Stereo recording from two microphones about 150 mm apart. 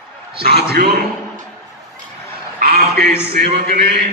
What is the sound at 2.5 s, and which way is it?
Speech, 90° right.